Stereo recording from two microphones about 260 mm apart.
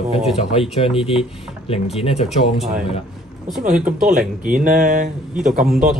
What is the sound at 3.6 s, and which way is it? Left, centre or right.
Speech, right.